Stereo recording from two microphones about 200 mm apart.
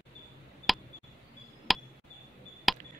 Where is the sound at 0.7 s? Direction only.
Centre (ahead or behind).